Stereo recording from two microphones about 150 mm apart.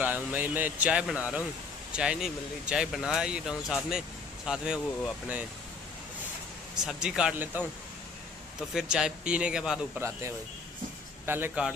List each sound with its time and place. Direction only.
0.0 s speech: 10° right (ahead or behind)
6.8 s speech: 5° right (ahead or behind)
8.7 s speech: 5° right (ahead or behind)
9.9 s speech: 15° right (ahead or behind)